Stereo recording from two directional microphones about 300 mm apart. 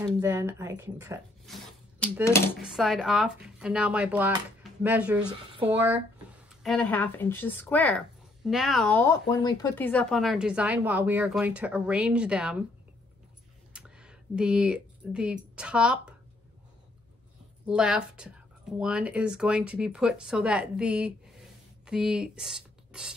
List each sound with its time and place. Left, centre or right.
0.0 s speech: centre
13.7 s speech: centre
17.6 s speech: centre